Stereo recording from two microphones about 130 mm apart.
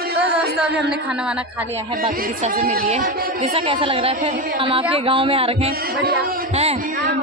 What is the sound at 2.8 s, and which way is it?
Music, 70° right (ahead or behind).